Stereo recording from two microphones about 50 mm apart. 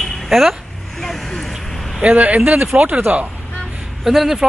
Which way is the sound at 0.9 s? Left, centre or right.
Centre.